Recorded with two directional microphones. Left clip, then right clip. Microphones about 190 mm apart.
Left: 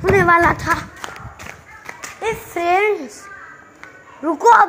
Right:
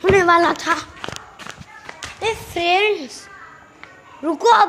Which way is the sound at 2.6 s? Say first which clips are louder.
Left 1 dB; 10° left (ahead or behind).